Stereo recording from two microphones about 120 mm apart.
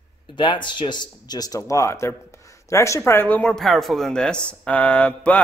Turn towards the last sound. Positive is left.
turn(degrees=10)  # may be behind; listen again after turning